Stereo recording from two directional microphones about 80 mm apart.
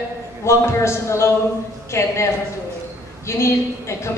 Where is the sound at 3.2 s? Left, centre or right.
Left.